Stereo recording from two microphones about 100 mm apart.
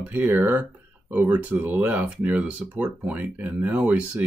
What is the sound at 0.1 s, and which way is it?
Speech, 20° right (ahead or behind).